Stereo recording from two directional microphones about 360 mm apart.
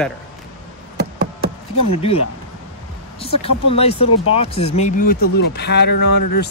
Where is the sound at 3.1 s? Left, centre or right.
Centre.